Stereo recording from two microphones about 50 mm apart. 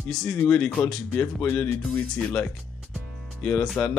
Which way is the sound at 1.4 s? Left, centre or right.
Left.